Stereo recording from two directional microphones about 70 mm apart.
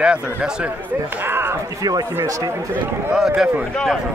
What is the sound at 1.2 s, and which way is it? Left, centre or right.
Speech, right.